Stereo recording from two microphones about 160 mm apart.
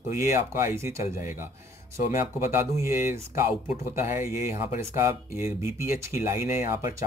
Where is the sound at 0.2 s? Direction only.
15° right (ahead or behind).